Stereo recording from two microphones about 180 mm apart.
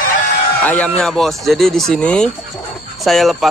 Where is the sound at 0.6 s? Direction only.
10° left (ahead or behind).